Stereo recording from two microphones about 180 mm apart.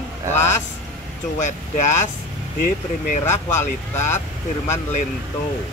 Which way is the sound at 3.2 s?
15° left (ahead or behind).